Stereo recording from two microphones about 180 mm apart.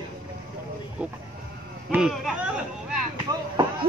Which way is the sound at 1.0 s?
10° right (ahead or behind).